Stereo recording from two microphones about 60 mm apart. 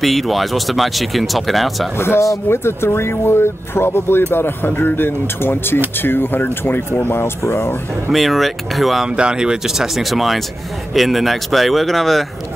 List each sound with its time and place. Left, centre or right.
0.0 s speech: centre
2.0 s speech: left
8.1 s speech: centre
9.1 s speech: centre